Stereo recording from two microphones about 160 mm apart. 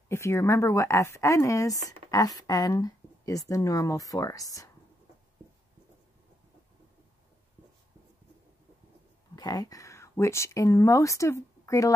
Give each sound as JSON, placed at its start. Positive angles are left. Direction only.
{"t": 0.1, "sound": "speech", "side_deg": 15}
{"t": 9.3, "sound": "speech", "side_deg": 25}